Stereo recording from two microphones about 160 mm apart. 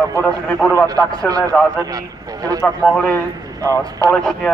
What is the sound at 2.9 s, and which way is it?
Speech, 5° left (ahead or behind).